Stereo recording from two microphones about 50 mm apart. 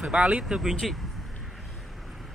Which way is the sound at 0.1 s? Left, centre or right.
Right.